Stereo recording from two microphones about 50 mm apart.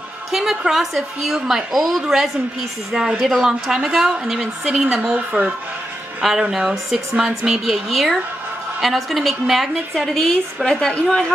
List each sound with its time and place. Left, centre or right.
0.3 s a woman's voice: centre; by 5.5 s right
6.5 s a woman's voice: centre